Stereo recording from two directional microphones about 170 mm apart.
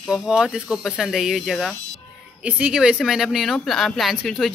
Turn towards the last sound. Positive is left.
turn(degrees=0)  # may be behind; listen again after turning